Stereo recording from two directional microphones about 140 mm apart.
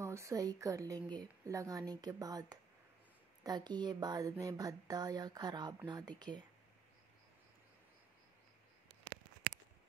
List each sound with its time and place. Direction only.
0.0 s speech: 20° right (ahead or behind)